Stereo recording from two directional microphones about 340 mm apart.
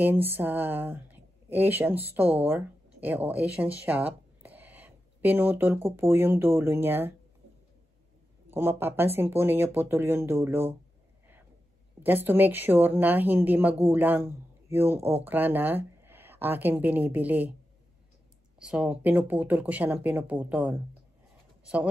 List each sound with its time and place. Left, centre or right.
0.0 s speech: centre
8.5 s speech: centre
12.0 s speech: centre
18.6 s speech: centre